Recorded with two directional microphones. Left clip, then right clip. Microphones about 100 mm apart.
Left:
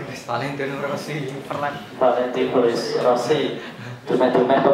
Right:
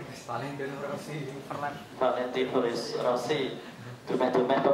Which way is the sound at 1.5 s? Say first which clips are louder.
Left 9 dB; 20° left (ahead or behind).